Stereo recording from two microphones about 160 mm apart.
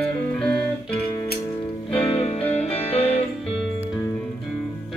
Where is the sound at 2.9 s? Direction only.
40° left (ahead or behind).